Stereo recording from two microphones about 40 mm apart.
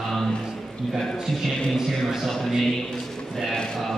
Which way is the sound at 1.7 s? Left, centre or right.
Centre.